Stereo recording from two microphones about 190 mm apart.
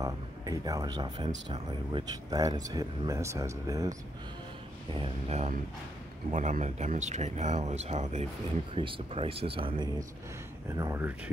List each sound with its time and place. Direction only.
0.0 s speech: 20° right (ahead or behind)
4.9 s speech: 30° right (ahead or behind)
10.8 s speech: 15° right (ahead or behind)